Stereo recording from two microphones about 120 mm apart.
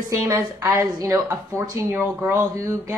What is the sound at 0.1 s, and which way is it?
A woman's voice, 30° right (ahead or behind).